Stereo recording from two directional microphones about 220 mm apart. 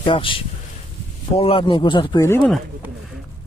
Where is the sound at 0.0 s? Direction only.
20° left (ahead or behind).